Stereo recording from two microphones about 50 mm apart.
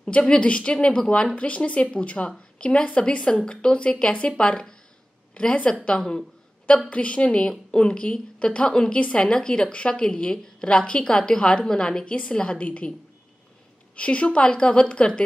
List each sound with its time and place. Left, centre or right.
0.0 s a woman's voice: left
1.3 s a woman's voice: left
6.9 s a woman's voice: left
13.9 s a woman's voice: left